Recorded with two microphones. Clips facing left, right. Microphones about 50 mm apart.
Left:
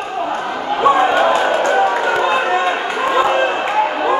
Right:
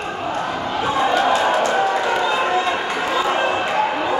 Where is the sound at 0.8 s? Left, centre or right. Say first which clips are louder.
Left 6 dB; left.